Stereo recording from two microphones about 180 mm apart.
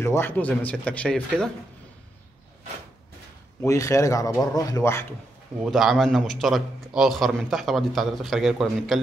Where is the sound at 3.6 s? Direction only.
15° left (ahead or behind).